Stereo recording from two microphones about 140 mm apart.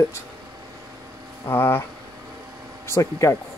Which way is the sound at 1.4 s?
15° left (ahead or behind).